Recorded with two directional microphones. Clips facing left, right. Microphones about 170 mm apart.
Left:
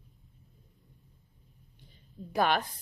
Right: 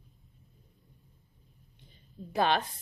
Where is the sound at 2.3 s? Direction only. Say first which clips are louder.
Even; 25° right (ahead or behind).